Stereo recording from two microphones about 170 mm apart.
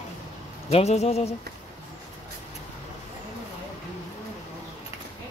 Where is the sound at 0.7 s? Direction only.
40° left (ahead or behind).